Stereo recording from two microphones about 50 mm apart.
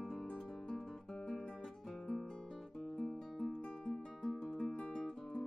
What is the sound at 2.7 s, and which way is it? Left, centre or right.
Music, centre.